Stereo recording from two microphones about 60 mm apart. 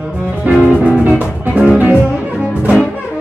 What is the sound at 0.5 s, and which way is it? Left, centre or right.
Music, centre.